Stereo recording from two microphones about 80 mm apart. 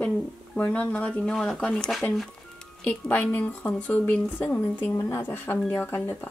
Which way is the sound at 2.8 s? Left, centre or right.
Centre.